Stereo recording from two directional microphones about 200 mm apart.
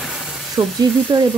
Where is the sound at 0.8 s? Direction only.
20° right (ahead or behind).